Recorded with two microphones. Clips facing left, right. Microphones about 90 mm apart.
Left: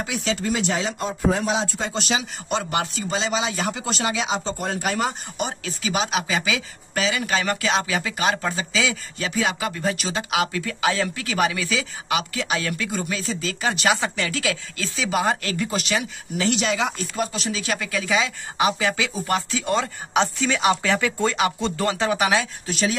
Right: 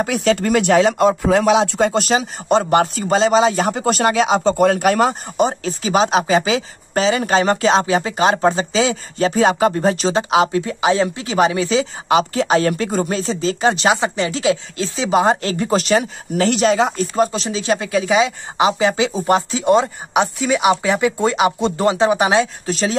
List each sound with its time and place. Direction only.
0.0 s speech: 50° right (ahead or behind)
5.4 s speech: 35° right (ahead or behind)